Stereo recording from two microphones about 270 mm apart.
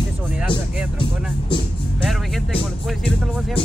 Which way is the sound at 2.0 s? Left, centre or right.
Centre.